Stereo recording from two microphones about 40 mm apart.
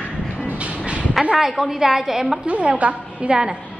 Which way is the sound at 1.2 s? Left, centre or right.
Centre.